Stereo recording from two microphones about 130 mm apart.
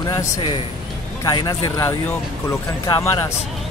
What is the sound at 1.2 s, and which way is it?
Speech, 30° left (ahead or behind).